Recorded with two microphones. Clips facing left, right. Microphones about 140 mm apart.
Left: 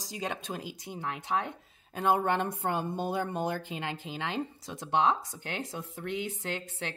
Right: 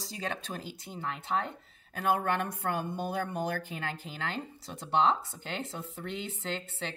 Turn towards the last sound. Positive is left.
turn(degrees=15)  # may be behind; listen again after turning